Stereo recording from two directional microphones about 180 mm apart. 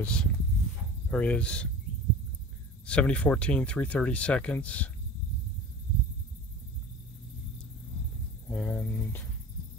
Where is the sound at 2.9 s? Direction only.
5° left (ahead or behind).